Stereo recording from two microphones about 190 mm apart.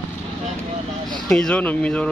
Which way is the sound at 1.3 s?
5° left (ahead or behind).